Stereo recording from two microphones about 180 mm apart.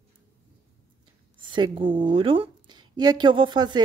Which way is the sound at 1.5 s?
25° right (ahead or behind).